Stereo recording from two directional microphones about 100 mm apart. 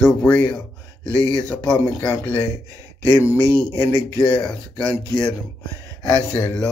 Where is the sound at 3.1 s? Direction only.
25° left (ahead or behind).